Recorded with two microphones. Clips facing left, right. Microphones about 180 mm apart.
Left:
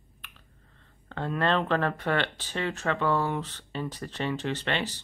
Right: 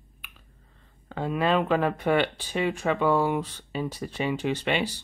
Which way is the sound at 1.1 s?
10° right (ahead or behind).